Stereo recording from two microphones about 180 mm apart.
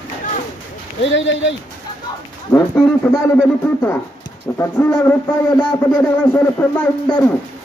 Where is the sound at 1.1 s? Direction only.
90° left.